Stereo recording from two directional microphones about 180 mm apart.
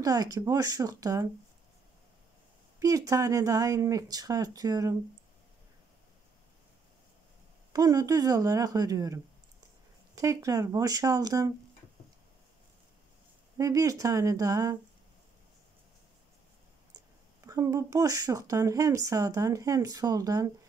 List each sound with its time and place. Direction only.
0.0 s speech: 20° right (ahead or behind)
2.8 s speech: 20° right (ahead or behind)
7.7 s speech: 20° right (ahead or behind)
13.6 s speech: 20° right (ahead or behind)
16.9 s speech: 15° right (ahead or behind)